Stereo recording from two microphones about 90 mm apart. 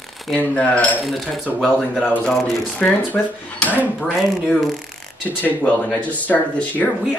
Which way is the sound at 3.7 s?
20° right (ahead or behind).